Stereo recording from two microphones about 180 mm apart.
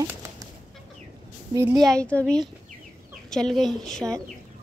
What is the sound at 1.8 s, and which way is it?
A woman's voice, 5° left (ahead or behind).